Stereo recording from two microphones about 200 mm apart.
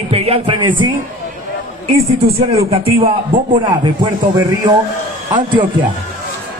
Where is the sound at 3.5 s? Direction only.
25° right (ahead or behind).